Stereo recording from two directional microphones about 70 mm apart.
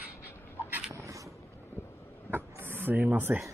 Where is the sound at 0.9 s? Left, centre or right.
Right.